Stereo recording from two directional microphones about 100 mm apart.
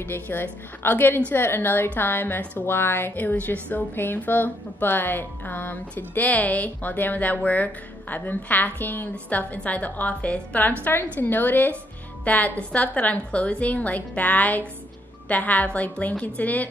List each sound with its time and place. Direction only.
0.0 s a woman's voice: 20° left (ahead or behind)